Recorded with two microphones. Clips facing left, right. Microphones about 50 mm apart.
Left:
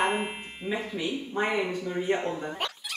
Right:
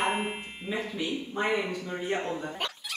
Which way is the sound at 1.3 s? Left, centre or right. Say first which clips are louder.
Left 1 dB; centre.